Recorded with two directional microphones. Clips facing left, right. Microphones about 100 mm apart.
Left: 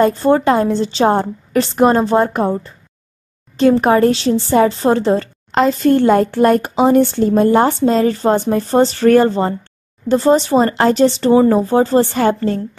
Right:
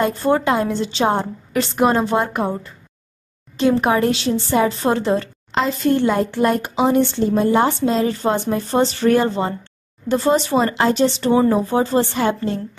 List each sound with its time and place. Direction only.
0.0 s a woman's voice: 35° left (ahead or behind)
5.5 s a woman's voice: 45° left (ahead or behind)